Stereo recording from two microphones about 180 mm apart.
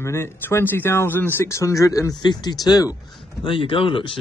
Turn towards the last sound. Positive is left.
turn(degrees=30)  # may be behind; listen again after turning